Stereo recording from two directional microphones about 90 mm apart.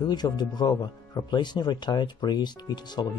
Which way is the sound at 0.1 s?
50° left (ahead or behind).